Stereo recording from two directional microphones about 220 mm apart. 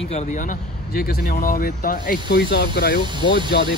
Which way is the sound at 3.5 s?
50° left (ahead or behind).